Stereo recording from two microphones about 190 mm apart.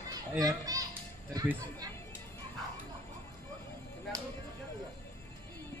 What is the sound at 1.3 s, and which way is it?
Speech, 20° right (ahead or behind).